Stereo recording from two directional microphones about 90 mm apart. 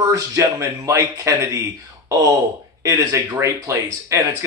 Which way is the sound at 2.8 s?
40° right (ahead or behind).